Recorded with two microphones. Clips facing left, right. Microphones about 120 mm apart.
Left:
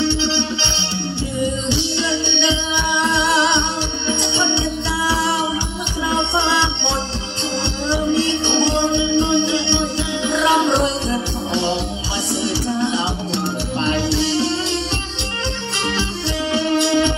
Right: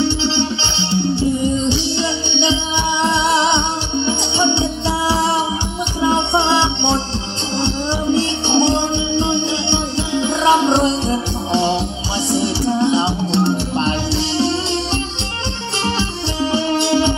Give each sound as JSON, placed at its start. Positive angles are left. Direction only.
{"t": 1.7, "sound": "music", "side_deg": -20}
{"t": 12.9, "sound": "music", "side_deg": -25}
{"t": 16.5, "sound": "music", "side_deg": -25}